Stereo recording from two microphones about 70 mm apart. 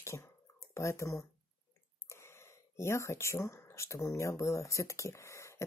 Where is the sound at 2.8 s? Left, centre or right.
Left.